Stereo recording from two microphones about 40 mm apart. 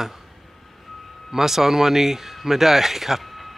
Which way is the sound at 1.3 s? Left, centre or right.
Centre.